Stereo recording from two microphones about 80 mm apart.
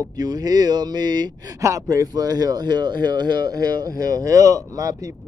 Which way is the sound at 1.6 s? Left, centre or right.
Right.